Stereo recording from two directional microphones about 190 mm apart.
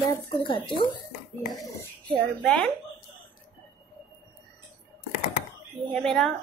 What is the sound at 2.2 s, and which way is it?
Speech, 5° left (ahead or behind).